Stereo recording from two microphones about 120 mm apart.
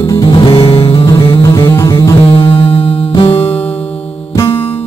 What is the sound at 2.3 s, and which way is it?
Music, 60° left (ahead or behind).